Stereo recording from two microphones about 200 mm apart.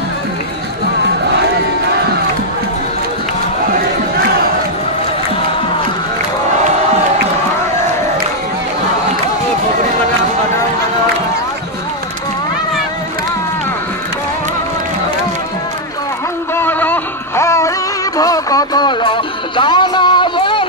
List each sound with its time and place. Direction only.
16.5 s music: 10° left (ahead or behind); by 20.6 s 25° left (ahead or behind)